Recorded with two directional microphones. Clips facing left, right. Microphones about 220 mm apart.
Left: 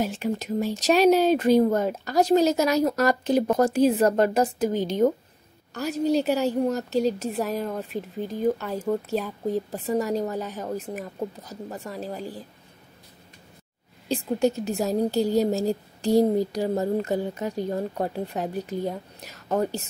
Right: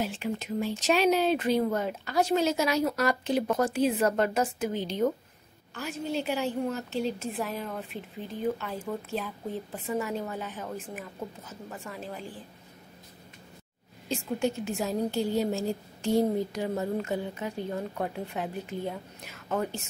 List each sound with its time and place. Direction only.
0.0 s a woman's voice: 40° left (ahead or behind)
14.0 s a woman's voice: 35° left (ahead or behind)